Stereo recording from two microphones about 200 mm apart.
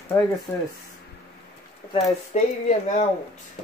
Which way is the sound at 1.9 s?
35° left (ahead or behind).